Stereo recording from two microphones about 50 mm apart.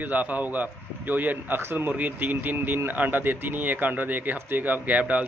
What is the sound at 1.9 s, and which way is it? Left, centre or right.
Speech, right.